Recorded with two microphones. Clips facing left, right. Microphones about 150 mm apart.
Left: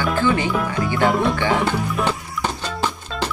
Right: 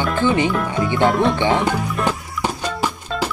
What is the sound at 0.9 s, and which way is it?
Speech, centre (ahead or behind).